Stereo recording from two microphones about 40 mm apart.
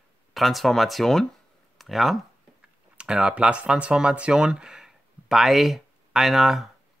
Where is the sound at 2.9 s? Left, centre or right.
Centre.